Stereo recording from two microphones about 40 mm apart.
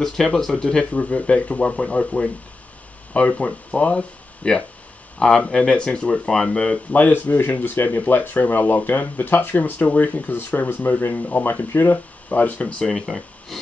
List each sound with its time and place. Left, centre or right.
0.0 s speech: centre; by 2.2 s left
3.3 s speech: left
5.5 s speech: centre
6.9 s speech: left
9.3 s speech: left
12.3 s speech: left
12.6 s speech: left
12.9 s speech: centre